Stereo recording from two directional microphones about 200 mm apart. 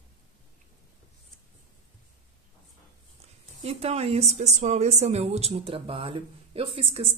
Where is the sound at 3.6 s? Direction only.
30° right (ahead or behind).